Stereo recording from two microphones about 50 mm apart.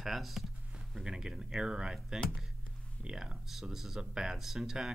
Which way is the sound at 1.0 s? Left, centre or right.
Centre.